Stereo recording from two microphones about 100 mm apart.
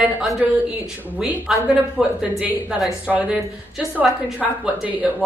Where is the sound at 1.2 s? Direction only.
5° right (ahead or behind).